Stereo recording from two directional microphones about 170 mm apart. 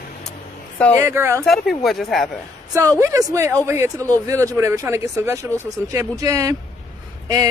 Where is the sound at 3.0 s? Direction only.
20° right (ahead or behind).